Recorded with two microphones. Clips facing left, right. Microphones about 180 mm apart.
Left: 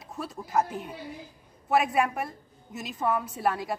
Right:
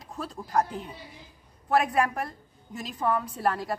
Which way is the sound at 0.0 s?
5° left (ahead or behind).